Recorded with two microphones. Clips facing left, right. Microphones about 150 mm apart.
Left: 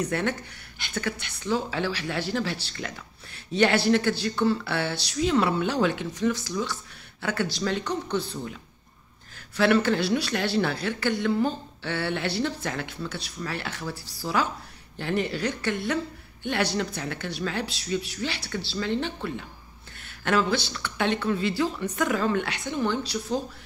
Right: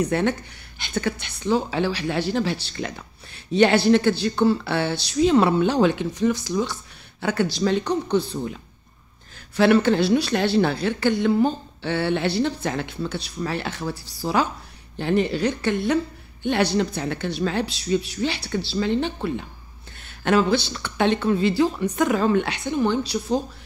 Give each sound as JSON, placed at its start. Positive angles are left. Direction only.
{"t": 0.0, "sound": "a woman's voice", "side_deg": -20}
{"t": 9.6, "sound": "a woman's voice", "side_deg": -20}